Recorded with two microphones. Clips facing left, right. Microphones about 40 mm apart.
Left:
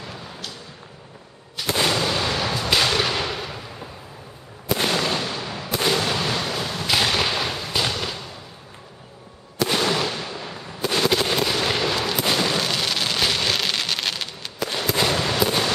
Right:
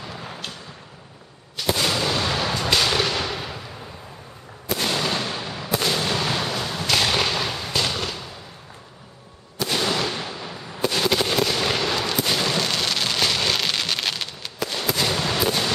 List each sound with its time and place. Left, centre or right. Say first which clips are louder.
0.3 s a sound: right 2 dB; right
1.8 s artillery fire: left 3 dB; centre
4.8 s fireworks: even; centre
5.8 s fireworks: left 2 dB; centre
6.2 s fireworks: even; centre
9.7 s fireworks: left 1 dB; centre
10.1 s artillery fire: even; centre
10.9 s fireworks: left 2 dB; centre
14.7 s fireworks: left 2 dB; centre